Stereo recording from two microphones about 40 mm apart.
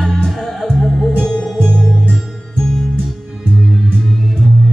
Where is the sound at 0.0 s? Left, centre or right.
Centre.